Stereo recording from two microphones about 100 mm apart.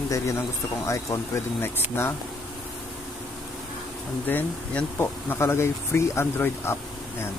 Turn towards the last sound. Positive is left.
turn(degrees=25)  # may be behind; listen again after turning